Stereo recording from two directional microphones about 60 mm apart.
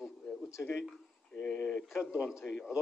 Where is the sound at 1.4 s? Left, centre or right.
Centre.